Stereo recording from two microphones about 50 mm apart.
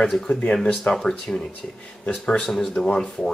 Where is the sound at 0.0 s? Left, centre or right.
Centre.